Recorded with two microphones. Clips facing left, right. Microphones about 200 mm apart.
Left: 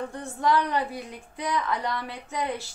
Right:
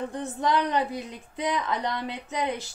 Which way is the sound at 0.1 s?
20° right (ahead or behind).